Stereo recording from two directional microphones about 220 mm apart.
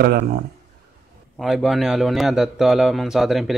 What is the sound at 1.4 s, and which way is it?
A man's voice, centre (ahead or behind).